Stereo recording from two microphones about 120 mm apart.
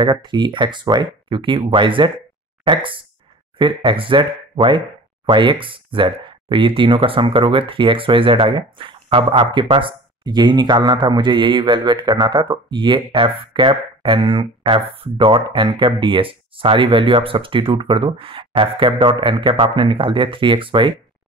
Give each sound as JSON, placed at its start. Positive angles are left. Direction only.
{"t": 0.0, "sound": "speech", "side_deg": -40}